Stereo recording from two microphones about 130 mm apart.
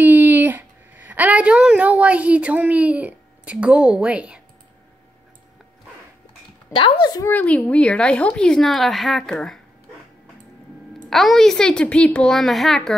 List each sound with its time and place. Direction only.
0.0 s a sound: 15° right (ahead or behind)
6.7 s speech: 40° left (ahead or behind)
7.2 s speech: 10° left (ahead or behind)
11.1 s speech: centre (ahead or behind)